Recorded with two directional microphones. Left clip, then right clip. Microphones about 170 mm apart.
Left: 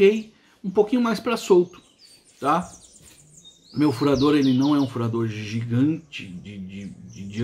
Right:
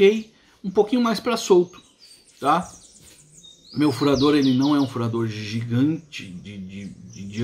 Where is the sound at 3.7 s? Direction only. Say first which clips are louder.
Right 1 dB; 5° right (ahead or behind).